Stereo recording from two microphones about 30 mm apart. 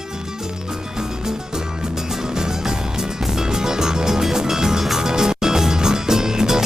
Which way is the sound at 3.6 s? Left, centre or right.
Centre.